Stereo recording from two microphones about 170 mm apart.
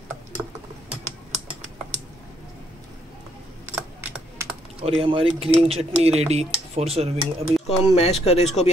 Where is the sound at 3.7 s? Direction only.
15° right (ahead or behind).